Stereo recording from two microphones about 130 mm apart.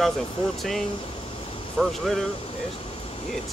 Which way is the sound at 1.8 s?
5° left (ahead or behind).